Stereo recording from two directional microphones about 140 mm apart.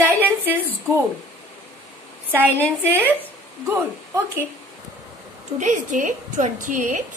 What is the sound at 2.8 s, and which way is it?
Speech, 15° right (ahead or behind).